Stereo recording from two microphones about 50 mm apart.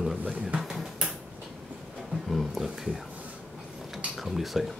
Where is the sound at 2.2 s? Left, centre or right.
Centre.